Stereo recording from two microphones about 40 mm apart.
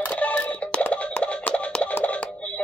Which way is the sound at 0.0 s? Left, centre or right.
Left.